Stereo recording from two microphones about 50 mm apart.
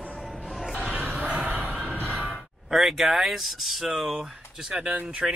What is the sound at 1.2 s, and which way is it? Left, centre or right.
Music, centre.